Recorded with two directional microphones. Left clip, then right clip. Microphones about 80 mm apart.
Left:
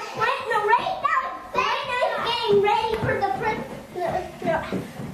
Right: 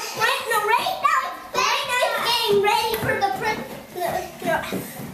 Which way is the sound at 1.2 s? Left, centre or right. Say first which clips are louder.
Right 2 dB; right.